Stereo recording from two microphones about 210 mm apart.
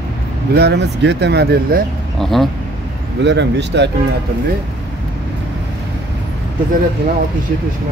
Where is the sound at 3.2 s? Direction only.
55° right (ahead or behind).